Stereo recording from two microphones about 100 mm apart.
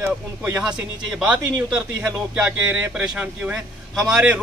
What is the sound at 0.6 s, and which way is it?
A man's voice, 5° right (ahead or behind).